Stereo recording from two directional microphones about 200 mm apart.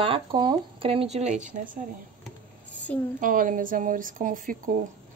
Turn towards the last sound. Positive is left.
turn(degrees=-40)  # may be behind; listen again after turning